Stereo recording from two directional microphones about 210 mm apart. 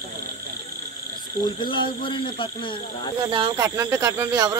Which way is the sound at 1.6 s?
25° left (ahead or behind).